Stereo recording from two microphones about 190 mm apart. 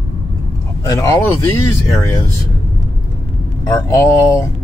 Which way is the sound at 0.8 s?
15° left (ahead or behind).